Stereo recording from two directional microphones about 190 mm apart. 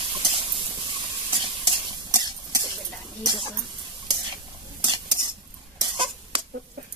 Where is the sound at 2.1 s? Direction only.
20° right (ahead or behind).